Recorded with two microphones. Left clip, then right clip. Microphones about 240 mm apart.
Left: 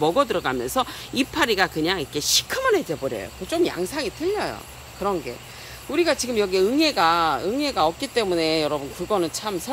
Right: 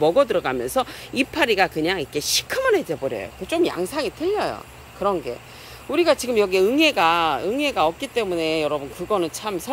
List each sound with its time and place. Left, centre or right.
0.0 s speech: centre